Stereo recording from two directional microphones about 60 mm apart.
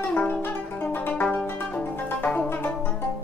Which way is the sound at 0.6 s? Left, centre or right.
Left.